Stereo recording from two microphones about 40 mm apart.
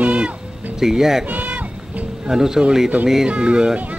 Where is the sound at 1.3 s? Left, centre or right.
Right.